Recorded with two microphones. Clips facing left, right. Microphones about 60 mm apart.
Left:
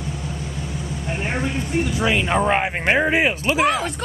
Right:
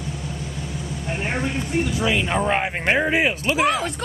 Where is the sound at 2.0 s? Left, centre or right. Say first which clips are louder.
Left 4 dB; left.